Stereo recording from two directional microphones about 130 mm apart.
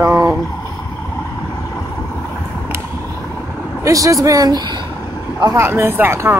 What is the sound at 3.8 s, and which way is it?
Speech, 25° right (ahead or behind).